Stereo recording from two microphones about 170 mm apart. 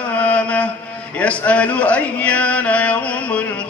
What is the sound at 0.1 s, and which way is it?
Mantra, 10° left (ahead or behind).